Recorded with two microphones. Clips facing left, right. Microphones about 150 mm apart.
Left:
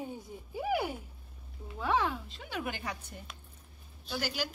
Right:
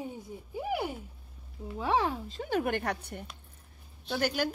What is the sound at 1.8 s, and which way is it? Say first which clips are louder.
Speech: right 2 dB; 30° right (ahead or behind).